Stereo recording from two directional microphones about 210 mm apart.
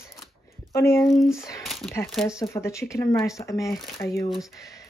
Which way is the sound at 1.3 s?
15° left (ahead or behind).